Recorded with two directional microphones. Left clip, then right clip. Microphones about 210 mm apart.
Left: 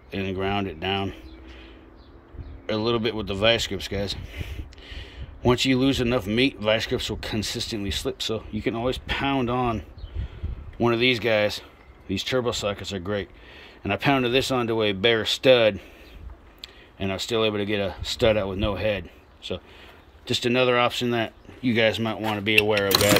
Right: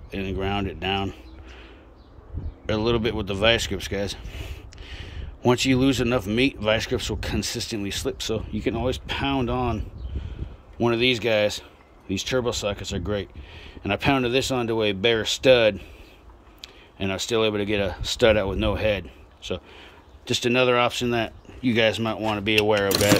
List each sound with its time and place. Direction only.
0.1 s speech: centre (ahead or behind)
2.6 s speech: 5° right (ahead or behind)